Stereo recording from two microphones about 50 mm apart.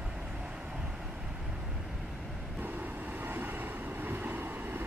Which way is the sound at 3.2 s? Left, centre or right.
Right.